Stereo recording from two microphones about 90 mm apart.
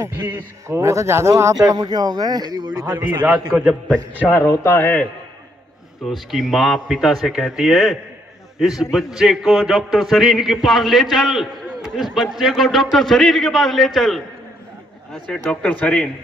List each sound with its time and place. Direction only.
0.7 s speech: 35° right (ahead or behind); by 2.8 s 50° right (ahead or behind)
3.2 s a man's voice: 20° right (ahead or behind)
4.2 s a man's voice: 25° left (ahead or behind)
6.0 s a man's voice: centre (ahead or behind)
15.3 s a man's voice: 10° left (ahead or behind)